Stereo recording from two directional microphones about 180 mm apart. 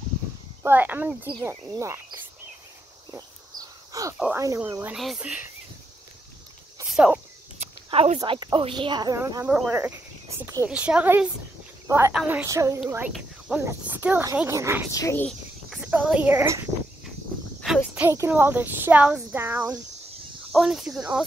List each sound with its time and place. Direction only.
0.7 s speech: 10° right (ahead or behind)
3.1 s a sound: 20° right (ahead or behind)
4.2 s speech: 15° right (ahead or behind)
6.9 s cricket: 5° right (ahead or behind)
7.6 s a sound: 35° right (ahead or behind)
8.2 s speech: 25° right (ahead or behind)
9.5 s speech: 5° right (ahead or behind)
12.4 s speech: 15° right (ahead or behind)
12.8 s speech: 5° right (ahead or behind)
14.9 s speech: 15° left (ahead or behind)
15.2 s cricket: centre (ahead or behind)
15.9 s speech: 10° right (ahead or behind)
17.6 s a sound: 5° left (ahead or behind)
17.9 s speech: 15° right (ahead or behind)